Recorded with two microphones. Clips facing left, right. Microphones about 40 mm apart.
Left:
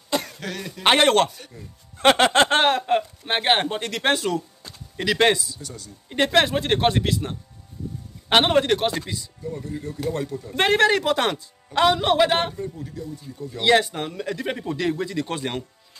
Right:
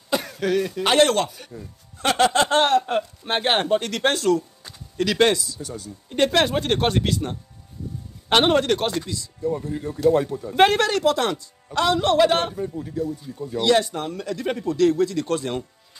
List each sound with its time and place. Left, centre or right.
0.1 s cough: centre
0.8 s music: left
1.3 s speech: centre
2.0 s music: left
2.9 s speech: centre
5.6 s speech: centre
6.0 s speech: centre
8.9 s speech: left
10.0 s speech: centre
10.7 s speech: centre
12.6 s speech: centre
13.0 s speech: right
13.6 s speech: left
14.3 s speech: centre